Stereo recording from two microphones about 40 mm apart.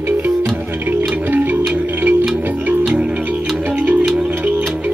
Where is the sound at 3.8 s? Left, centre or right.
Right.